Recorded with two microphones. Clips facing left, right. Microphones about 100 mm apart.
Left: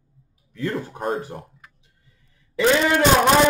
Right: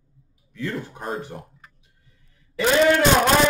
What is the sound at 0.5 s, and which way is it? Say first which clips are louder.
Speech: left 3 dB; 45° left (ahead or behind).